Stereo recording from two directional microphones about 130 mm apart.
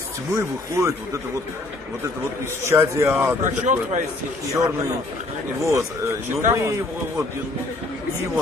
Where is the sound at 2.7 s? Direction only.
20° right (ahead or behind).